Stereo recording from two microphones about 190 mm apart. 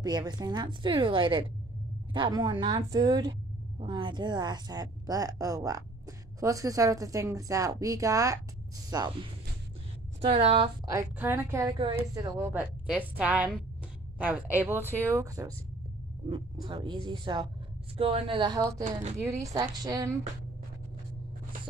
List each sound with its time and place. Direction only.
0.0 s a woman's voice: 20° right (ahead or behind)
10.2 s a woman's voice: 30° right (ahead or behind)
10.9 s speech: 15° right (ahead or behind)
16.3 s a woman's voice: 25° right (ahead or behind)